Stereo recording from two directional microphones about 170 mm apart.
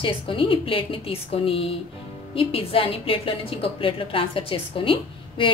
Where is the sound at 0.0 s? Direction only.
30° left (ahead or behind).